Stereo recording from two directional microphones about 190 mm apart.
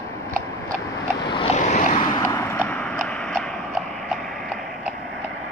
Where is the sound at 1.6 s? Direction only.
40° left (ahead or behind).